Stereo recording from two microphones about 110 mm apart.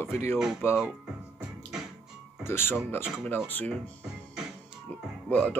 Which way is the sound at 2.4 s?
20° left (ahead or behind).